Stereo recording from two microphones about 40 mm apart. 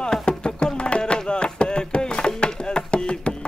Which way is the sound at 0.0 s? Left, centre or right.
Centre.